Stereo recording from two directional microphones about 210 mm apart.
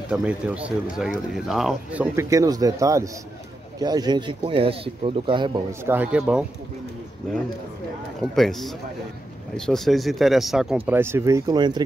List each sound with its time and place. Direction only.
0.1 s speech: 5° right (ahead or behind)
2.1 s speech: 15° right (ahead or behind)
8.2 s speech: centre (ahead or behind); by 11.8 s 20° right (ahead or behind)